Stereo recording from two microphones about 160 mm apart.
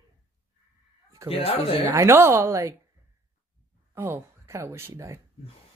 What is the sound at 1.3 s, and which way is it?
Speech, 35° left (ahead or behind).